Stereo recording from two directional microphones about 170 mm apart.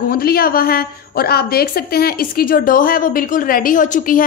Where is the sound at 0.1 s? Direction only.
60° left (ahead or behind).